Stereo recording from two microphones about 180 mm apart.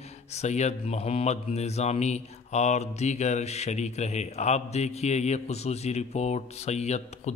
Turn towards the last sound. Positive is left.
turn(degrees=40)  # may be behind; listen again after turning